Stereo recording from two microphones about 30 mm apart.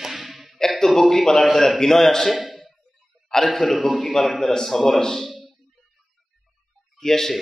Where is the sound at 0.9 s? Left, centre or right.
Centre.